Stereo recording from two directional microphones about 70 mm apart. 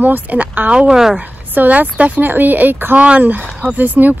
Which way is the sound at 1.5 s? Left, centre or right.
Right.